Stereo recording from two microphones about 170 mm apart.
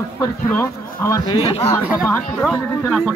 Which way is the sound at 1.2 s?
30° left (ahead or behind).